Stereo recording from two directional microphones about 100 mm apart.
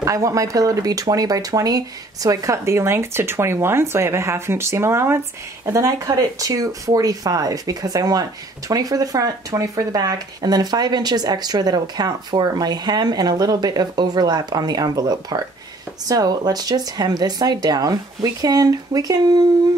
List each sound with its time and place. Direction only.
0.0 s speech: 35° right (ahead or behind)